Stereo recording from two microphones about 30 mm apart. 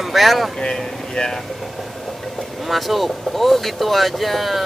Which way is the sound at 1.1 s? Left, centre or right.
Left.